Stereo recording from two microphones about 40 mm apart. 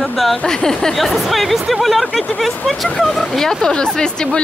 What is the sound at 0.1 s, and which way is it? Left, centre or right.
Speech, centre.